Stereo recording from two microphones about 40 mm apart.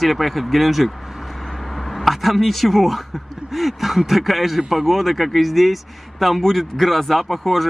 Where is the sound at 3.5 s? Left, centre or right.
Centre.